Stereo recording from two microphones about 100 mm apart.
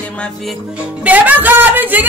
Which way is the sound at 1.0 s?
15° right (ahead or behind).